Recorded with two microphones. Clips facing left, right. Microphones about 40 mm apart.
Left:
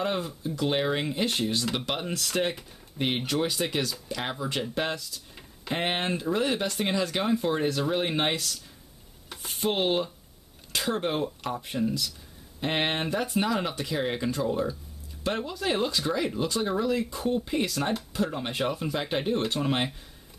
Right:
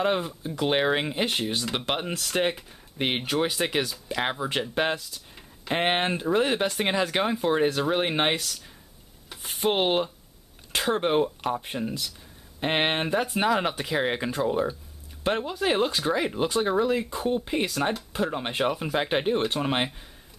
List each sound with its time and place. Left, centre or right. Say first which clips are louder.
0.0 s speech: right 4 dB; right
9.6 s speech: right 3 dB; right
17.6 s speech: right 2 dB; centre